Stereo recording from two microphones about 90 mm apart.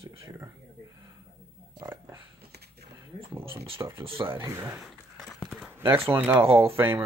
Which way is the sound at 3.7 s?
30° right (ahead or behind).